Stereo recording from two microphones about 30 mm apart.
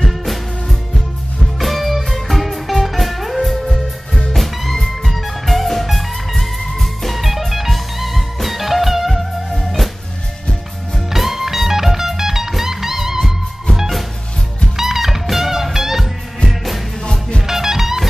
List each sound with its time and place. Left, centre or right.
0.1 s music: centre
11.1 s music: centre
14.8 s music: centre
16.4 s music: centre
17.0 s music: left
17.5 s music: centre